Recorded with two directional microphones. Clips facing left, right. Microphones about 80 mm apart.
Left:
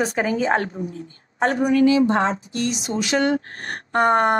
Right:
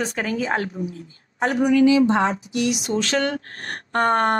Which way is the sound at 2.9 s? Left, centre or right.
Centre.